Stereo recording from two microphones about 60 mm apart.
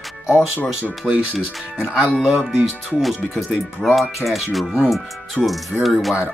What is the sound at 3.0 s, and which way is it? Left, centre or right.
Speech, centre.